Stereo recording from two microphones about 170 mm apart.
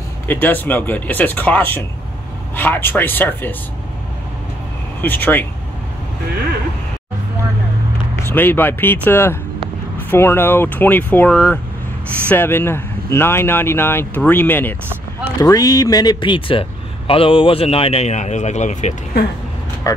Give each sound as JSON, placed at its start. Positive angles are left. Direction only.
{"t": 0.3, "sound": "speech", "side_deg": 10}
{"t": 5.0, "sound": "speech", "side_deg": 10}
{"t": 8.2, "sound": "a man's voice", "side_deg": 15}